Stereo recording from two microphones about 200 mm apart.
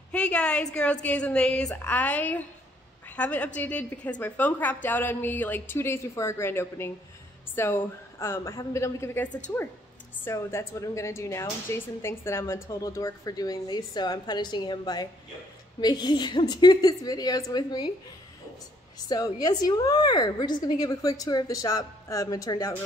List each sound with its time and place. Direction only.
0.1 s a woman's voice: 5° left (ahead or behind)
19.0 s a woman's voice: 20° left (ahead or behind)